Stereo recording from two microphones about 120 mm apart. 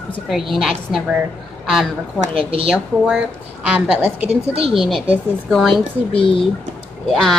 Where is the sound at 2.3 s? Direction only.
50° right (ahead or behind).